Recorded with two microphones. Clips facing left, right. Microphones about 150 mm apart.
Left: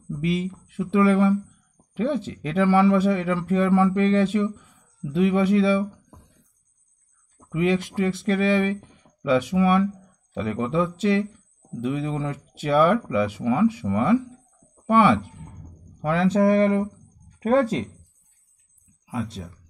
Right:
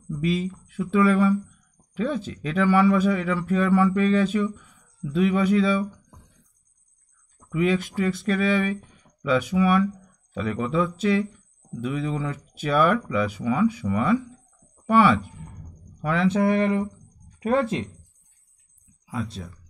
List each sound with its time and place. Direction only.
0.1 s speech: 25° left (ahead or behind)
7.3 s speech: 25° left (ahead or behind)
19.4 s speech: 25° left (ahead or behind)